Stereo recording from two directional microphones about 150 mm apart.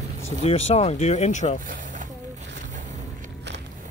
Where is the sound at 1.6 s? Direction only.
60° right (ahead or behind).